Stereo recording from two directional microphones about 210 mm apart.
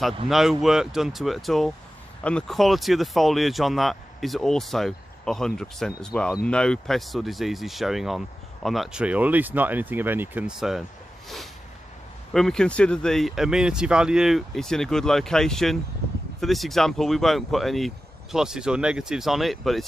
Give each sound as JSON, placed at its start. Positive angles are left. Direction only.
{"t": 0.3, "sound": "speech", "side_deg": 0}